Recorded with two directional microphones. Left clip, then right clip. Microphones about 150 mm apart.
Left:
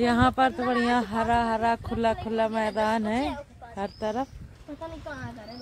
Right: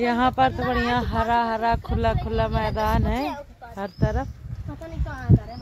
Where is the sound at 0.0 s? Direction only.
10° left (ahead or behind).